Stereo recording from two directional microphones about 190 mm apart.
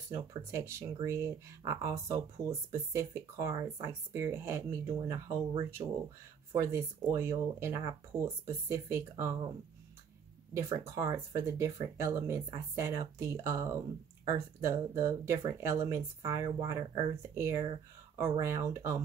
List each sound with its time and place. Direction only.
0.1 s speech: 15° right (ahead or behind)
10.5 s speech: 15° right (ahead or behind)